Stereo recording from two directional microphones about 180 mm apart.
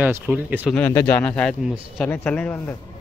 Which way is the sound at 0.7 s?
10° left (ahead or behind).